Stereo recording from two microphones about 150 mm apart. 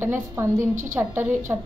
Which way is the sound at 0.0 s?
15° right (ahead or behind).